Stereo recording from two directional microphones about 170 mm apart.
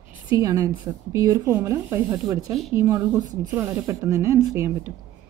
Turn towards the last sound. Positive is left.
turn(degrees=-15)  # may be behind; listen again after turning